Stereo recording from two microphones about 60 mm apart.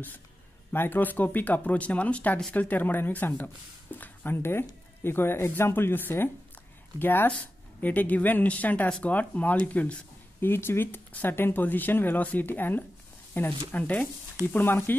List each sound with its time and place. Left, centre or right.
0.7 s speech: left
10.4 s speech: left